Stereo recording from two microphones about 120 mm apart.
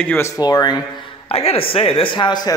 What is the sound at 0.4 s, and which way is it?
Speech, 35° left (ahead or behind).